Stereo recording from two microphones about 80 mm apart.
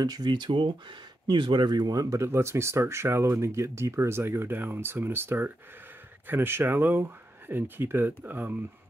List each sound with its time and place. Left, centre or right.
0.0 s speech: right
1.2 s speech: right